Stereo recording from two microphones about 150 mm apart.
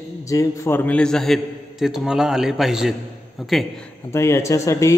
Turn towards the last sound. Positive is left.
turn(degrees=20)  # may be behind; listen again after turning